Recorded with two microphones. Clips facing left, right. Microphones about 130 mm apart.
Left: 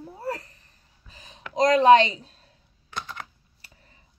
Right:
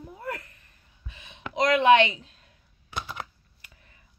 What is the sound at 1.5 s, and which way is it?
A woman's voice, 40° left (ahead or behind).